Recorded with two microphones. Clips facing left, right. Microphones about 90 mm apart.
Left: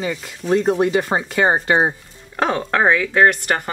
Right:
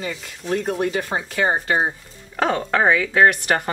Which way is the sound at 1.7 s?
60° left (ahead or behind).